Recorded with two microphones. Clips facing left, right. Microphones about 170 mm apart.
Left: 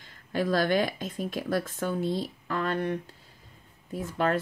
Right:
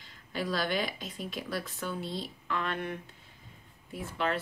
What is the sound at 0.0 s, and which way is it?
Speech, 50° left (ahead or behind).